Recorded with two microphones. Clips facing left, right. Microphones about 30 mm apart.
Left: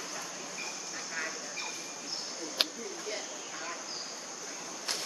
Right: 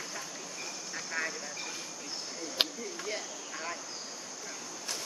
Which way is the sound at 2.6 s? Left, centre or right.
Centre.